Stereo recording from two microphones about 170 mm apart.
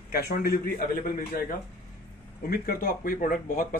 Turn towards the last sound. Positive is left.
turn(degrees=55)  # may be behind; listen again after turning